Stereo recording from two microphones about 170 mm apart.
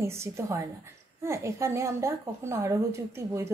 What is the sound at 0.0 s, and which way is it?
A woman's voice, 15° right (ahead or behind).